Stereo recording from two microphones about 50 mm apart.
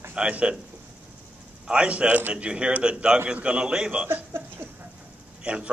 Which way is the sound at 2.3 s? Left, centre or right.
Right.